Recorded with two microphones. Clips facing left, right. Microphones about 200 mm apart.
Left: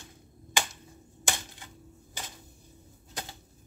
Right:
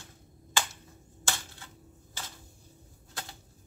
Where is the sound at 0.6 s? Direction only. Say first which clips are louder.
Left 1 dB; 15° left (ahead or behind).